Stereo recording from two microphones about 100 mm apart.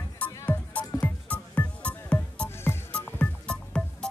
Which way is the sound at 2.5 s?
25° left (ahead or behind).